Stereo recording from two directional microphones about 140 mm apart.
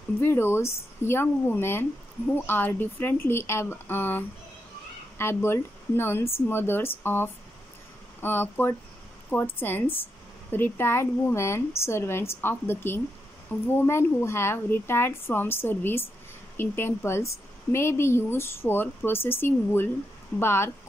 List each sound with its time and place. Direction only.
0.2 s a woman's voice: 15° left (ahead or behind)